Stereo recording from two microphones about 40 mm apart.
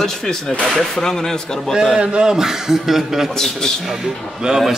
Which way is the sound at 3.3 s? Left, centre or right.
Centre.